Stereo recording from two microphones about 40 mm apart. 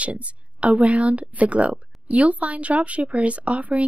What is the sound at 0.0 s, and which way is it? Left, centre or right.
Speech, right.